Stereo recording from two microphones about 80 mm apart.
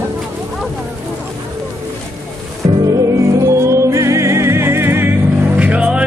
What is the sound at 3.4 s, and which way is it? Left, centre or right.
Music, right.